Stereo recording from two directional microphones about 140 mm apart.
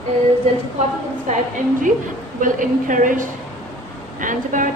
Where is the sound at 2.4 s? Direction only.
70° right (ahead or behind).